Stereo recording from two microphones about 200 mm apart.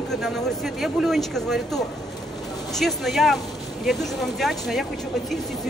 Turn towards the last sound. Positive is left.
turn(degrees=0)  # may be behind; listen again after turning